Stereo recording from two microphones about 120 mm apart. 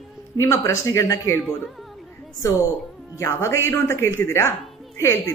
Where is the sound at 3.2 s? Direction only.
25° left (ahead or behind).